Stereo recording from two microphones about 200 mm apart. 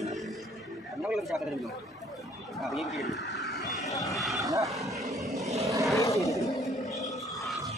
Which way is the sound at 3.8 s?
15° left (ahead or behind).